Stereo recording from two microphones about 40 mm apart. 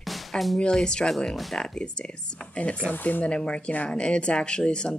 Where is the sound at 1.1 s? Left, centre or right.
Centre.